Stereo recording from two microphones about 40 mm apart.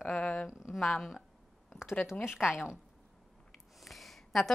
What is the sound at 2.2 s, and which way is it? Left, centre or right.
Speech, centre.